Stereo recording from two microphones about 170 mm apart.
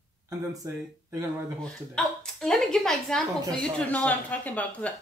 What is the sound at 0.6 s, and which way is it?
Speech, 15° right (ahead or behind).